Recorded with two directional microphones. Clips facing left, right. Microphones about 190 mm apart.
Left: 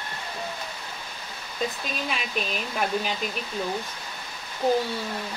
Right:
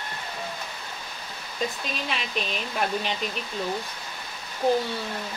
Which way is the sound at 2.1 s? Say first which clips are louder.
Even; 5° left (ahead or behind).